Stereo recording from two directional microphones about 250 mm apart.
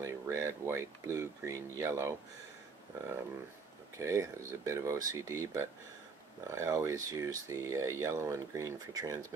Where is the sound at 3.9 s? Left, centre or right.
Centre.